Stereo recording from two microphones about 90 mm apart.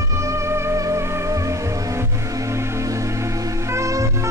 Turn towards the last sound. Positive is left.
turn(degrees=-35)  # may be behind; listen again after turning